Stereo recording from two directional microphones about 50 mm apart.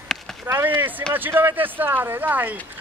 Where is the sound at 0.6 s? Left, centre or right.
Right.